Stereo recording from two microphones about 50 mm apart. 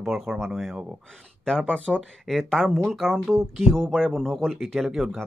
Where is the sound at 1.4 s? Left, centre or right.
Centre.